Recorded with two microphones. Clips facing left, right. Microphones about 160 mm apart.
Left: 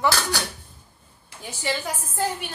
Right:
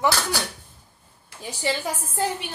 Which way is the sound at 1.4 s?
35° right (ahead or behind).